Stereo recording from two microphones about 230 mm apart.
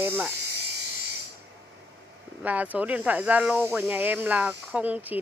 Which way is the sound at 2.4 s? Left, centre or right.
Centre.